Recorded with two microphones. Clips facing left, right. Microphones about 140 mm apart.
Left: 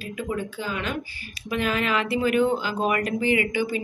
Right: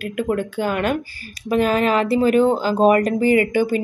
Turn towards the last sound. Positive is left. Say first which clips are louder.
# right 7 dB
turn(degrees=-45)  # may be behind; listen again after turning